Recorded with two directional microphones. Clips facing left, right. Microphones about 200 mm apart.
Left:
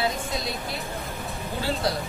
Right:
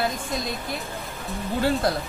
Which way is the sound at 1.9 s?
50° right (ahead or behind).